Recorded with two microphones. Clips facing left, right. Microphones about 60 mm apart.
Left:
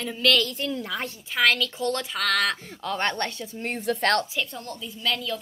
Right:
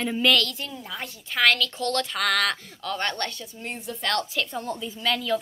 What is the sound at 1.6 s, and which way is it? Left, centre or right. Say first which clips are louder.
Speech: right 1 dB; centre.